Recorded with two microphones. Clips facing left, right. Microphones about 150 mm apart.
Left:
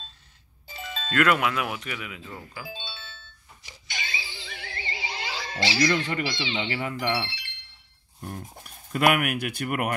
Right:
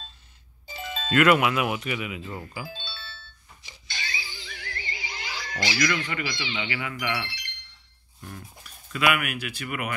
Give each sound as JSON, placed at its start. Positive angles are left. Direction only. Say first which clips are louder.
{"t": 0.7, "sound": "speech", "louder": "right 2 dB", "side_deg": -5}
{"t": 2.7, "sound": "music", "louder": "left 1 dB", "side_deg": 15}
{"t": 8.2, "sound": "speech", "louder": "left 4 dB", "side_deg": 45}